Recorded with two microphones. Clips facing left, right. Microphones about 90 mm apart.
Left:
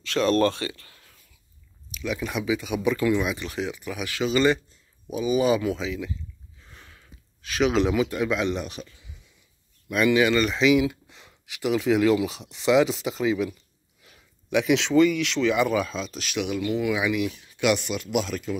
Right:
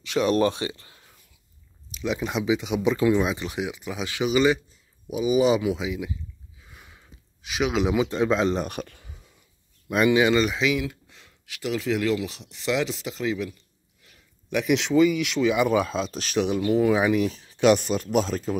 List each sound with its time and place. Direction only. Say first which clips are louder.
0.0 s speech: even; 15° right (ahead or behind)
6.6 s a sound: even; 10° right (ahead or behind)
7.6 s speech: left 2 dB; 5° right (ahead or behind)
7.9 s speech: right 2 dB; 25° right (ahead or behind)
8.6 s a sound: right 4 dB; 55° right (ahead or behind)
9.8 s speech: right 1 dB; 25° right (ahead or behind)
10.4 s speech: left 2 dB; 5° right (ahead or behind)
10.7 s speech: left 6 dB; 5° left (ahead or behind)
14.5 s speech: left 1 dB; centre (ahead or behind)
15.9 s speech: right 4 dB; 35° right (ahead or behind)